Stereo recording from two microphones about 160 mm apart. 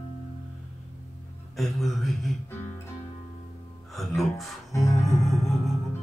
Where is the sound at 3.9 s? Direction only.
Centre (ahead or behind).